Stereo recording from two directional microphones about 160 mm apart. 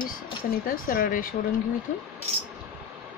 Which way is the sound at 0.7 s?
60° left (ahead or behind).